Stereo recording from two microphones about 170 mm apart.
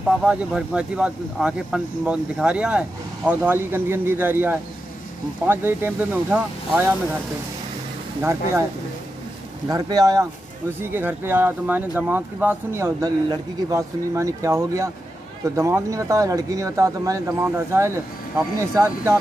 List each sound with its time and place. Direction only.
0.2 s speech: 5° right (ahead or behind)
8.2 s speech: 15° right (ahead or behind)
9.7 s speech: 20° right (ahead or behind)